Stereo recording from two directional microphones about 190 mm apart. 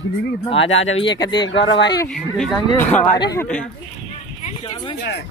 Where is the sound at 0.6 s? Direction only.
90° left.